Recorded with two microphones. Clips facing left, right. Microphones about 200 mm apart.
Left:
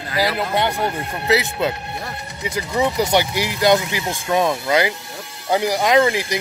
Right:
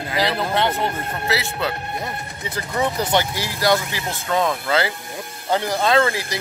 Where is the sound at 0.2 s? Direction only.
10° left (ahead or behind).